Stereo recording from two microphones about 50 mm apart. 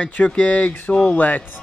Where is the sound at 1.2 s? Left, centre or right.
Left.